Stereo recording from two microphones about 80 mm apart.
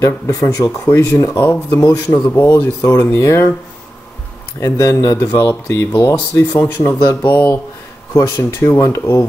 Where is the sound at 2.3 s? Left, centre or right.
Left.